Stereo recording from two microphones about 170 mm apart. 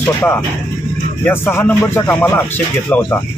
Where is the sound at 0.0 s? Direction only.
15° left (ahead or behind).